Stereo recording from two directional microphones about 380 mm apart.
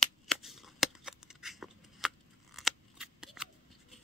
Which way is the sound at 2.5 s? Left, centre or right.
Centre.